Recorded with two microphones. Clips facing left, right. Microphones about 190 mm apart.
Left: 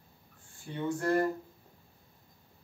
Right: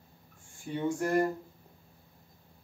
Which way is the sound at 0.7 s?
15° right (ahead or behind).